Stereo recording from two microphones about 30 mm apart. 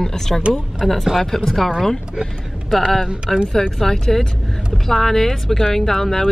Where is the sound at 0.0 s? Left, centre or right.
Centre.